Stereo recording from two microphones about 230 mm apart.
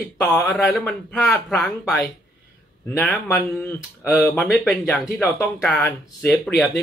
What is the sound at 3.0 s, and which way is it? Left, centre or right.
A man's voice, centre.